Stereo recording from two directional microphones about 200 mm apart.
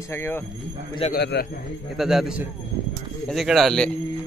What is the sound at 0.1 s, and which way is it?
Speech, 10° left (ahead or behind).